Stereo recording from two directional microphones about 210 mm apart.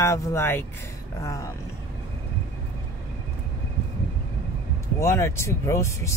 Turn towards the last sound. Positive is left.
turn(degrees=15)  # may be behind; listen again after turning